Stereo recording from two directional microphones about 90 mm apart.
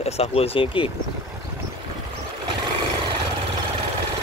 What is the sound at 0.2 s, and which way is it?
Speech, 85° left.